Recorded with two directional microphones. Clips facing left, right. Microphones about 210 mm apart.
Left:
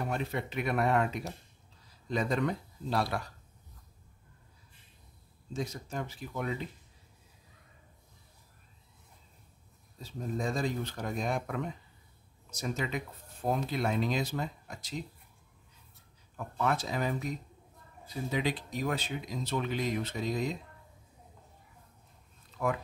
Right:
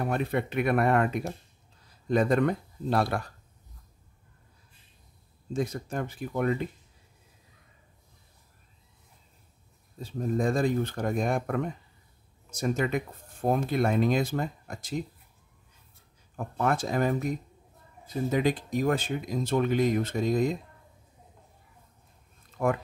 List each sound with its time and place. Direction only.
0.0 s speech: 55° right (ahead or behind)
5.5 s speech: 55° right (ahead or behind)
9.9 s speech: 55° right (ahead or behind)
16.3 s speech: 50° right (ahead or behind)